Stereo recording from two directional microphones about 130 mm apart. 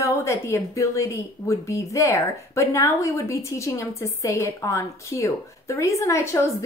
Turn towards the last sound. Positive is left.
turn(degrees=20)  # may be behind; listen again after turning